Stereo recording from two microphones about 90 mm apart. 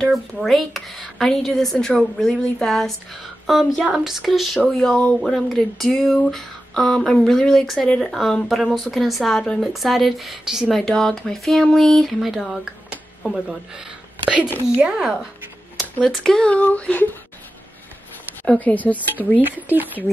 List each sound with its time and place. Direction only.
0.0 s speech: centre (ahead or behind)
4.7 s speech: 10° left (ahead or behind)
10.8 s speech: 5° left (ahead or behind)
18.6 s speech: 15° left (ahead or behind)
19.4 s speech: 20° right (ahead or behind)